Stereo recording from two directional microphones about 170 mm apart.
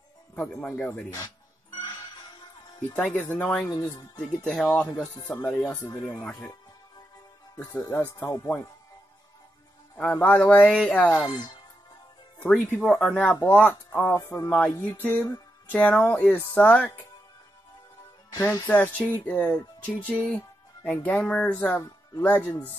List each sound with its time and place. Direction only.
0.4 s speech: 10° left (ahead or behind)
1.8 s music: 25° left (ahead or behind)
3.0 s speech: 10° left (ahead or behind)
3.7 s speech: 20° left (ahead or behind)
4.5 s speech: 5° left (ahead or behind)
8.2 s speech: 15° left (ahead or behind)
10.3 s a sound: 5° left (ahead or behind)
11.2 s speech: 25° left (ahead or behind)
12.4 s speech: 10° left (ahead or behind)
18.3 s speech: 20° left (ahead or behind)
18.7 s speech: 10° left (ahead or behind)